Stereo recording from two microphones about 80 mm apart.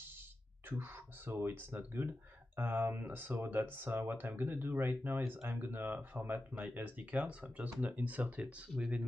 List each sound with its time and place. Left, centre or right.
0.7 s speech: right